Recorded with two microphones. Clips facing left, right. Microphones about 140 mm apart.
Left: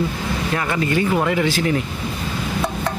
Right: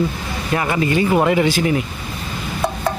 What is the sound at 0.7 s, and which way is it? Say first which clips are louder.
Speech: right 3 dB; 15° right (ahead or behind).